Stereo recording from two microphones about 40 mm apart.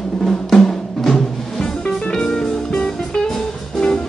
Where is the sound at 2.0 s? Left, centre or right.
Centre.